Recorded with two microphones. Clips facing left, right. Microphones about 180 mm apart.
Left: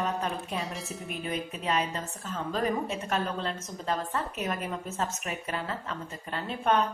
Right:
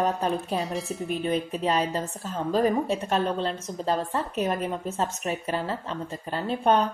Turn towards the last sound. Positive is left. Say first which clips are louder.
# right 4 dB
turn(degrees=-35)  # may be behind; listen again after turning